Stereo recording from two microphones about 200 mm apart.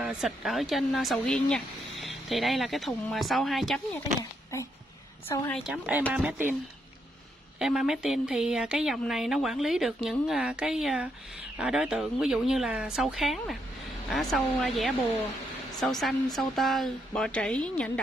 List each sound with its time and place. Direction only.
0.0 s speech: 5° right (ahead or behind)
4.2 s speech: 15° left (ahead or behind)
5.5 s speech: 5° right (ahead or behind)
7.5 s speech: 5° right (ahead or behind)